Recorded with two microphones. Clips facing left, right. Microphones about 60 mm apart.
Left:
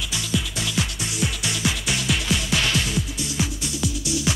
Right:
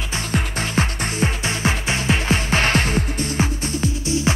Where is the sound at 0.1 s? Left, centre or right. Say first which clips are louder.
Right 4 dB; right.